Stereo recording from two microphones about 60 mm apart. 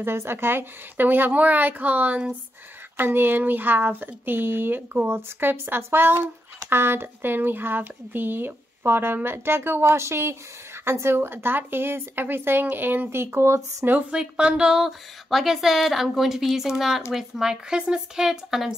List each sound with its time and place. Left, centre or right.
0.0 s speech: right
13.8 s speech: right
14.1 s speech: centre
14.9 s speech: centre